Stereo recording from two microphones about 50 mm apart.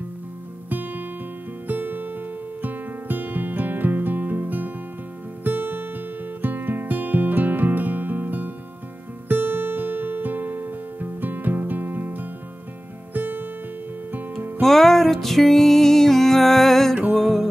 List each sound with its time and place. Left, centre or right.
0.7 s music: right
14.6 s music: centre